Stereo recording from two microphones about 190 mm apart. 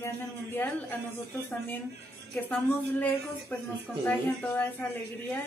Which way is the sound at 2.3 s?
5° left (ahead or behind).